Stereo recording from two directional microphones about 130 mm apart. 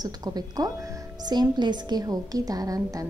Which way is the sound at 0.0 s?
30° right (ahead or behind).